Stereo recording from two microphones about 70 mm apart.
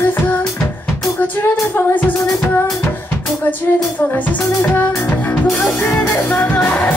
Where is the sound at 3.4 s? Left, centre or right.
Left.